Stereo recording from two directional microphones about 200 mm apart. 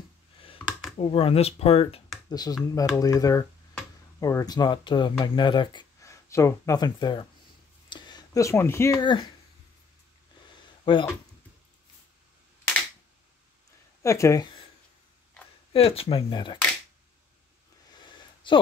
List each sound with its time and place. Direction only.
0.9 s speech: 30° left (ahead or behind)
2.2 s speech: 20° left (ahead or behind)
10.9 s speech: 25° left (ahead or behind)
14.0 s speech: 15° left (ahead or behind)
15.7 s speech: 30° left (ahead or behind)
18.0 s a sound: 25° left (ahead or behind)